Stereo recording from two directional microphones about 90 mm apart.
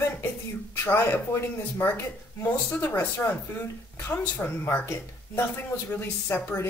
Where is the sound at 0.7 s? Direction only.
30° left (ahead or behind).